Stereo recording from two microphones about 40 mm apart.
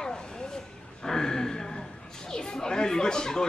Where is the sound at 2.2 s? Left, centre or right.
Centre.